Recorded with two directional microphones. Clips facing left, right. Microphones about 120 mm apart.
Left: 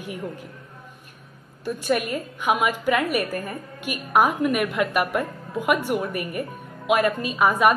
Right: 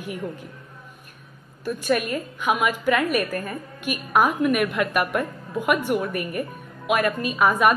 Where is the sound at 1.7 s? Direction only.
15° left (ahead or behind).